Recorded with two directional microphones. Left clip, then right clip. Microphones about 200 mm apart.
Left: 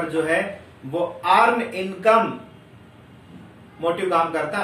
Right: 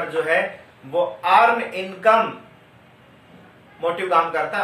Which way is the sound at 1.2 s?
5° left (ahead or behind).